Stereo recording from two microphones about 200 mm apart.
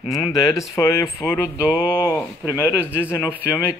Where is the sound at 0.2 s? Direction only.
15° left (ahead or behind).